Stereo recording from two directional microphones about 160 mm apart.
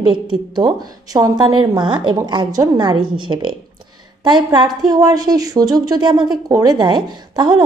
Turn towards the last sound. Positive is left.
turn(degrees=-25)  # may be behind; listen again after turning